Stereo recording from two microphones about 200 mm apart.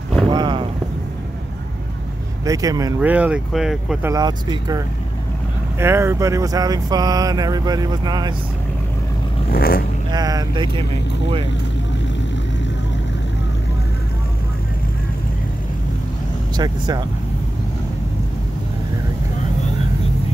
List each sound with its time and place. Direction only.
0.3 s a sound: 20° right (ahead or behind)
2.4 s speech: 15° right (ahead or behind)
4.1 s speech: 20° right (ahead or behind)
9.5 s speech: 50° left (ahead or behind)
10.1 s speech: 20° right (ahead or behind)
16.5 s speech: 20° right (ahead or behind)